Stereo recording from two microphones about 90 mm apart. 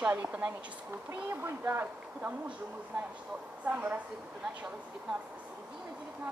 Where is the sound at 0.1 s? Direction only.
15° right (ahead or behind).